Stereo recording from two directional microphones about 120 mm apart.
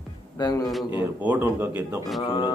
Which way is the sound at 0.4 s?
35° left (ahead or behind).